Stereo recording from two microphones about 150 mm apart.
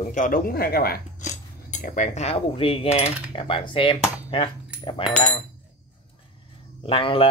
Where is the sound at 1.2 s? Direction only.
55° left (ahead or behind); by 5.0 s 35° left (ahead or behind).